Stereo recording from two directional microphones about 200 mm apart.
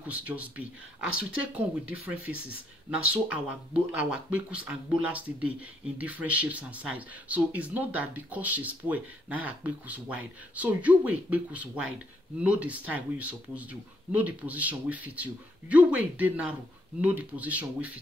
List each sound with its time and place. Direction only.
0.0 s speech: 10° right (ahead or behind)